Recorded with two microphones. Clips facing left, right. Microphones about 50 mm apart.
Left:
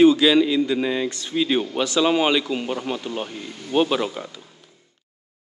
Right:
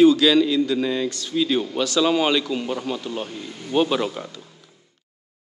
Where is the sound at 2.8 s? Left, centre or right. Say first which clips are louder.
Even; left.